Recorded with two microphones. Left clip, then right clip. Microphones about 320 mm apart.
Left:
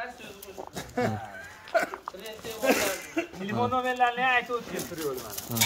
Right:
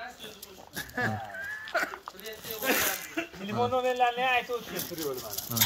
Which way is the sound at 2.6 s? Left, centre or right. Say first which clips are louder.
Left 3 dB; left.